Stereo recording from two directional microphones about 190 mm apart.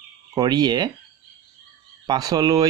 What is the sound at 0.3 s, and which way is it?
Speech, 20° right (ahead or behind).